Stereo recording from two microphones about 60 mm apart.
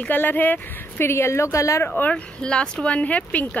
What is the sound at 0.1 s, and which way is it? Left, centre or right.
Speech, left.